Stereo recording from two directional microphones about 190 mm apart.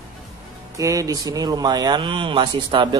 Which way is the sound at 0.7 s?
15° right (ahead or behind).